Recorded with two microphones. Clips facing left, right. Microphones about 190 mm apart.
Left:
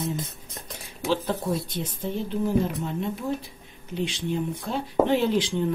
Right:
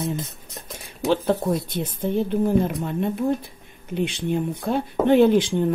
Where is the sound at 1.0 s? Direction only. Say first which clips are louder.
Right 5 dB; 55° right (ahead or behind).